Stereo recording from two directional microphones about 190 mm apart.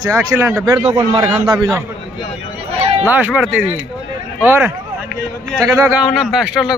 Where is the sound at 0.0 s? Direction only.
15° right (ahead or behind).